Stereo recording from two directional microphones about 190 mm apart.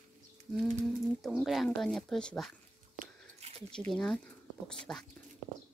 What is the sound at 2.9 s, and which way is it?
Whispering, 35° right (ahead or behind).